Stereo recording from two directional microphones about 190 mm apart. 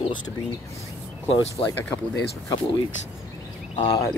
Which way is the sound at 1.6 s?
30° left (ahead or behind).